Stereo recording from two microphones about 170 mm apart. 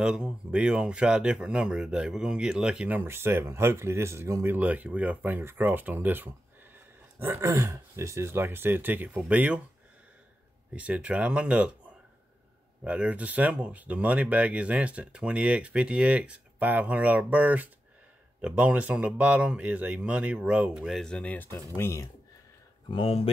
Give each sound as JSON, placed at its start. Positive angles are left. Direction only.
{"t": 0.0, "sound": "speech", "side_deg": -5}
{"t": 10.7, "sound": "speech", "side_deg": -5}
{"t": 12.8, "sound": "speech", "side_deg": -5}
{"t": 22.8, "sound": "speech", "side_deg": 35}